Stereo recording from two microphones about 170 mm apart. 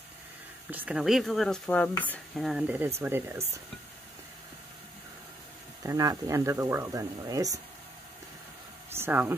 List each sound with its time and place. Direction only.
0.7 s speech: 10° right (ahead or behind)
5.9 s speech: 20° right (ahead or behind)
8.9 s speech: 10° right (ahead or behind)